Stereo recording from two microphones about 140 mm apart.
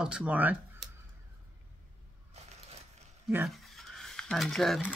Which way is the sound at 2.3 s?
50° right (ahead or behind).